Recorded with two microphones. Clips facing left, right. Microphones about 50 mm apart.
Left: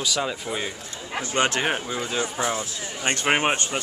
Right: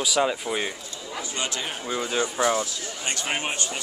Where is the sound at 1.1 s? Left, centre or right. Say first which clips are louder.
Left 7 dB; left.